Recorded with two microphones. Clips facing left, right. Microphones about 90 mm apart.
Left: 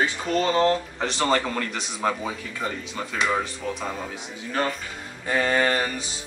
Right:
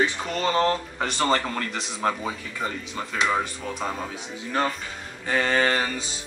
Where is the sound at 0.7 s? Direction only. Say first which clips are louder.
Left 2 dB; 5° right (ahead or behind).